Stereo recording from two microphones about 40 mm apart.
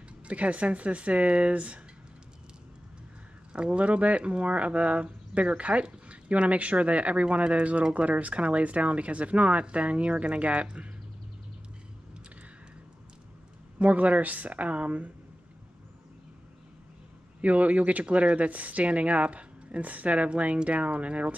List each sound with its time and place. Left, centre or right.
0.3 s speech: right
3.5 s speech: right
13.7 s speech: right
17.4 s speech: right